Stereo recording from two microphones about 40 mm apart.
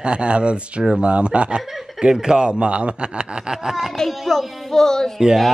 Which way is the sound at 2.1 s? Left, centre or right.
Centre.